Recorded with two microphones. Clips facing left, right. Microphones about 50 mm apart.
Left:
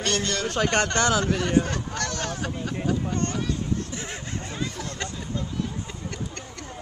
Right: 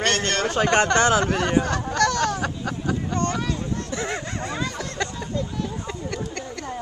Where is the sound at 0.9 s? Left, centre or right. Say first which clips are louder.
Right 4 dB; right.